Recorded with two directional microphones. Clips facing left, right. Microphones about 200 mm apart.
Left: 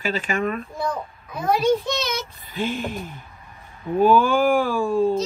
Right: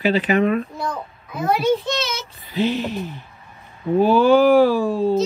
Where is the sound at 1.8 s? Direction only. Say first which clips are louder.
Right 1 dB; 15° left (ahead or behind).